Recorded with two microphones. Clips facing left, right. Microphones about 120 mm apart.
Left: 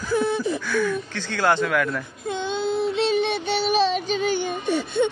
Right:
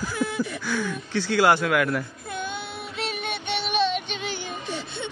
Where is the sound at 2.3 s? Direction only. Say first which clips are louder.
Left 8 dB; 20° left (ahead or behind).